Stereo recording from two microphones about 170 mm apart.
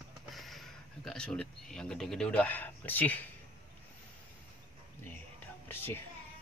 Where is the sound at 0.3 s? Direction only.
Centre (ahead or behind).